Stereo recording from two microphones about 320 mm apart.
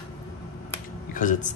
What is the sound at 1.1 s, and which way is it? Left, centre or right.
Speech, left.